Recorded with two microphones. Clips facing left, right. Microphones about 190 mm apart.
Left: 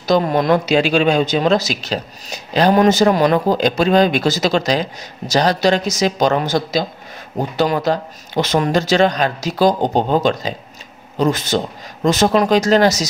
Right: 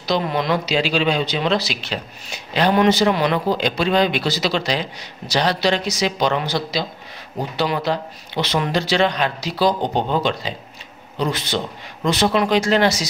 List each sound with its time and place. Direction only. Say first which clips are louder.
0.0 s speech: left 6 dB; 45° left (ahead or behind)